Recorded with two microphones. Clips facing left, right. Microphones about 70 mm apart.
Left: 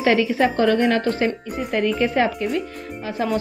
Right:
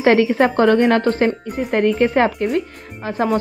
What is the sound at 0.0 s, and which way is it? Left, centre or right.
A woman's voice, right.